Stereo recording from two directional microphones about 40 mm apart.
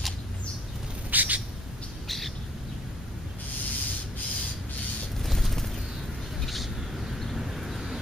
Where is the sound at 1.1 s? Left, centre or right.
Right.